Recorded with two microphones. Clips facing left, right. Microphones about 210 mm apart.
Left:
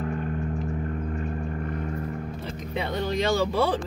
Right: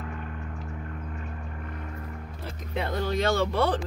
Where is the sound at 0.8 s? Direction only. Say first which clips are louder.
Left 8 dB; 40° left (ahead or behind).